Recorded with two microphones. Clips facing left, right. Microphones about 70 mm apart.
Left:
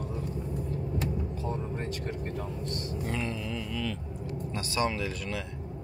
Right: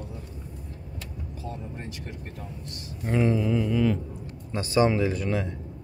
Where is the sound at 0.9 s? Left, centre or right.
Left.